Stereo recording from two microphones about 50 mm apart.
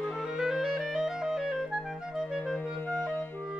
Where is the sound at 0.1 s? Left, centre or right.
Centre.